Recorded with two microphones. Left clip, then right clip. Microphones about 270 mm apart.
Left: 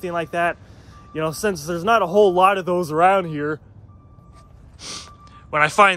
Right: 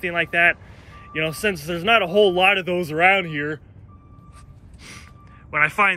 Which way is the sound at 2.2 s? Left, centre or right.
Centre.